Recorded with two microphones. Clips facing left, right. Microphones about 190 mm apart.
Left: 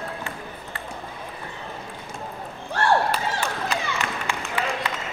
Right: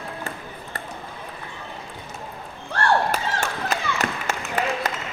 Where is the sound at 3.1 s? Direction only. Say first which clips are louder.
Even; 45° right (ahead or behind).